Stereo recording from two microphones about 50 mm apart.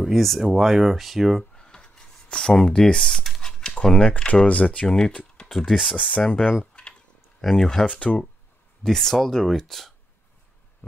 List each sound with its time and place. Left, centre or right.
0.0 s speech: centre
1.5 s a sound: centre
3.8 s speech: left
5.5 s speech: centre
5.9 s speech: left
6.7 s tick-tock: centre
7.5 s speech: centre
7.8 s speech: left
8.8 s speech: centre